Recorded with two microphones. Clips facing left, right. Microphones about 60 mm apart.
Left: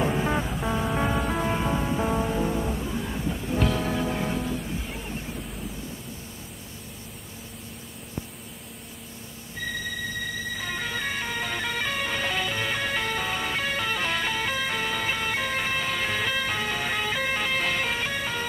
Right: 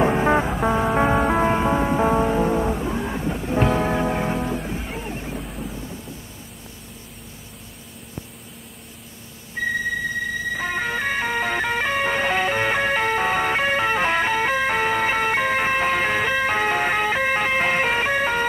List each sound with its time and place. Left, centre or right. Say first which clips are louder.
0.0 s music: right 7 dB; right
10.6 s music: right 6 dB; right